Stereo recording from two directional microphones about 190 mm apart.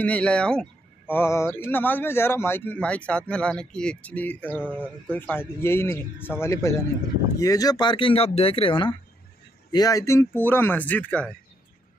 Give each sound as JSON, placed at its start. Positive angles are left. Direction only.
{"t": 0.0, "sound": "speech", "side_deg": 5}